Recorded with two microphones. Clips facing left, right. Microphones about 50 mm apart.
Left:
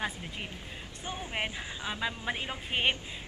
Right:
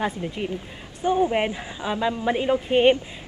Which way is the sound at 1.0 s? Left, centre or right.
Right.